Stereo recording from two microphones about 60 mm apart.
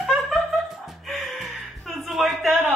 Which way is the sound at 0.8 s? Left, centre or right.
Centre.